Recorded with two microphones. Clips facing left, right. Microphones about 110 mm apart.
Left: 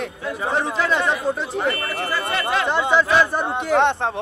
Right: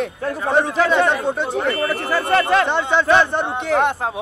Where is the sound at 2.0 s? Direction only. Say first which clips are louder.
Right 6 dB; 60° right (ahead or behind).